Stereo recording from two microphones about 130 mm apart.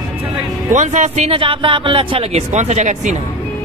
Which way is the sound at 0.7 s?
65° right (ahead or behind).